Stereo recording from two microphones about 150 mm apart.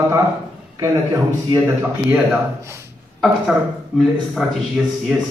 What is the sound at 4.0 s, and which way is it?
A man's voice, centre (ahead or behind).